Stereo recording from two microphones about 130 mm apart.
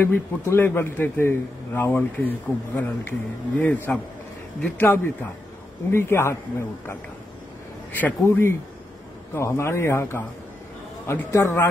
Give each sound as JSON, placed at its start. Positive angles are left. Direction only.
{"t": 0.0, "sound": "a man's voice", "side_deg": 15}
{"t": 4.9, "sound": "a man's voice", "side_deg": 15}
{"t": 7.9, "sound": "a man's voice", "side_deg": 15}